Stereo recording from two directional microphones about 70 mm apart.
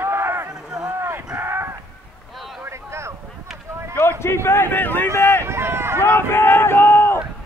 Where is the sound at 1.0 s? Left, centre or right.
Right.